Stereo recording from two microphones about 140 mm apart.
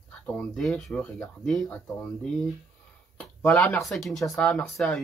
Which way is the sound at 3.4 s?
10° left (ahead or behind).